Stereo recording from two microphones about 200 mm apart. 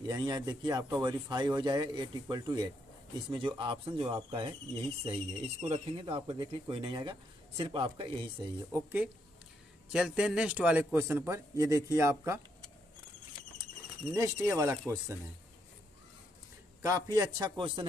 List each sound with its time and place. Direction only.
0.0 s speech: 20° right (ahead or behind)
8.7 s a man's voice: 10° right (ahead or behind)
14.1 s a man's voice: 15° right (ahead or behind)
16.8 s speech: 15° right (ahead or behind)